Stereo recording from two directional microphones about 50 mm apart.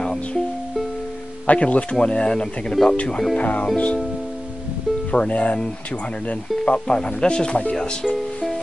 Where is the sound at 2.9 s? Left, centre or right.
Left.